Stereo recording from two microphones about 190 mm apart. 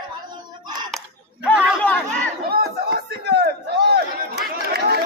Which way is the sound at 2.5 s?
55° right (ahead or behind).